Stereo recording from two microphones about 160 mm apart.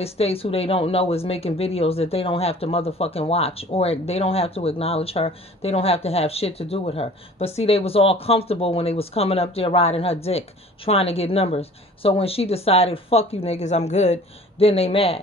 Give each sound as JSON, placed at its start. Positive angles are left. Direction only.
{"t": 0.0, "sound": "speech", "side_deg": 40}